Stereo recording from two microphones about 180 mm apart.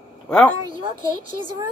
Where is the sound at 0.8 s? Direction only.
30° right (ahead or behind).